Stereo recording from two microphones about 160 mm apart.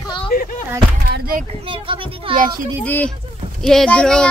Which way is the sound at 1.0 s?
70° right (ahead or behind).